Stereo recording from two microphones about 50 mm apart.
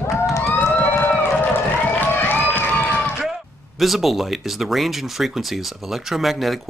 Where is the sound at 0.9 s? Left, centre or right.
Left.